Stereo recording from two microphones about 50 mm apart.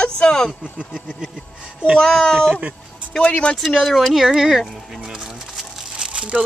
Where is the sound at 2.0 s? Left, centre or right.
Centre.